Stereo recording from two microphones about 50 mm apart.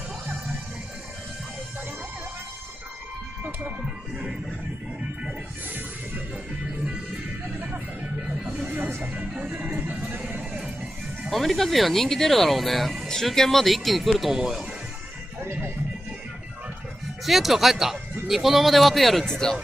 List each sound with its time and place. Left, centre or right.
3.8 s music: centre
8.0 s music: right
8.6 s speech: right
9.0 s music: right
9.4 s speech: right
9.8 s music: right
11.2 s speech: centre
14.1 s music: centre
15.4 s music: right
17.2 s speech: centre